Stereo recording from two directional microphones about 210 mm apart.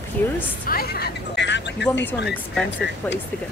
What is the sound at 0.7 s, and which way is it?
Speech, 45° left (ahead or behind).